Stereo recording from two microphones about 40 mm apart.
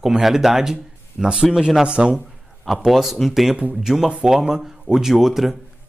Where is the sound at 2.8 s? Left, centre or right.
Centre.